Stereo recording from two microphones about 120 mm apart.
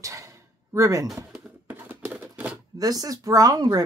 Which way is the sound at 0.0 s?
25° right (ahead or behind).